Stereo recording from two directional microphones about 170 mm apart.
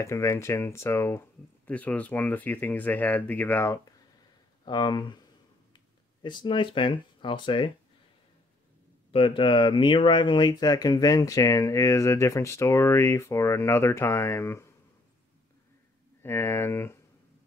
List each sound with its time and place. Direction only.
0.0 s speech: 15° left (ahead or behind)
4.6 s speech: 25° left (ahead or behind)
6.2 s speech: 30° left (ahead or behind)
9.1 s speech: 30° left (ahead or behind); by 14.7 s 15° left (ahead or behind)
16.2 s speech: 15° left (ahead or behind)